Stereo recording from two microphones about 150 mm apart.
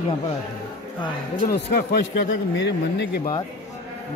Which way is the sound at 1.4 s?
80° left.